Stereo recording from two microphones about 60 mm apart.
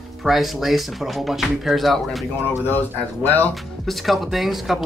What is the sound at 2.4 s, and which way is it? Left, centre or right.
Speech, left.